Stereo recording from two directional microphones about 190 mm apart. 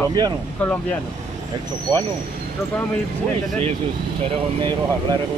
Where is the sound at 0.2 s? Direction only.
20° right (ahead or behind).